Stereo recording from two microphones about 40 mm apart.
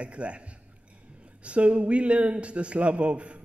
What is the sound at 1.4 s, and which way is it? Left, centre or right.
A man's voice, right.